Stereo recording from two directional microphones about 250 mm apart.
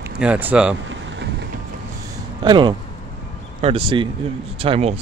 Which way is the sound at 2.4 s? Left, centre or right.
Centre.